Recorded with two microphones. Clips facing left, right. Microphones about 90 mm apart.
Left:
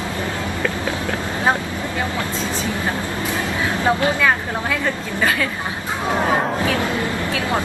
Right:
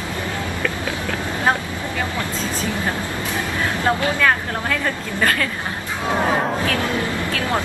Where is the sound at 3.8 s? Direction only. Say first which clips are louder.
Left 1 dB; 20° left (ahead or behind); by 6.6 s centre (ahead or behind).